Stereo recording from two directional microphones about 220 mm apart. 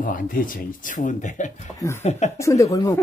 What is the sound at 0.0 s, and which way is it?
Speech, 40° left (ahead or behind).